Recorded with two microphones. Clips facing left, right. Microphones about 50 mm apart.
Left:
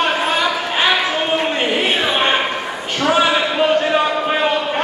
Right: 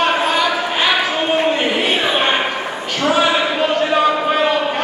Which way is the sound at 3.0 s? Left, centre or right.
Centre.